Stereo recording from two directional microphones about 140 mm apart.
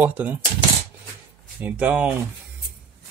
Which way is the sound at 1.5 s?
10° right (ahead or behind).